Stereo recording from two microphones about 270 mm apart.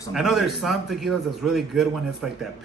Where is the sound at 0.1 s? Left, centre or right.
Centre.